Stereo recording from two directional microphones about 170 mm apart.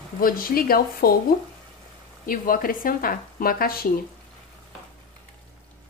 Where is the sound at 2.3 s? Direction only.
55° left (ahead or behind).